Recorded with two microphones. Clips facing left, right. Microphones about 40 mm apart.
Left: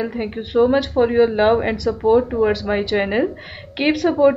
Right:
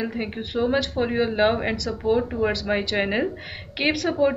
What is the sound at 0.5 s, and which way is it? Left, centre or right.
Speech, left.